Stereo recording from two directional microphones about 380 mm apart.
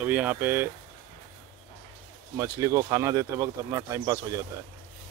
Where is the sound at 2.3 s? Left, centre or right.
Centre.